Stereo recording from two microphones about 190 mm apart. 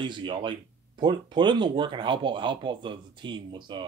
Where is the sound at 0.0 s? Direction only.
25° right (ahead or behind).